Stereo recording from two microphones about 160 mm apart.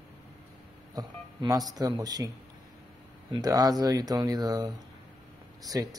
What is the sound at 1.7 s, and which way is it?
Speech, 25° right (ahead or behind).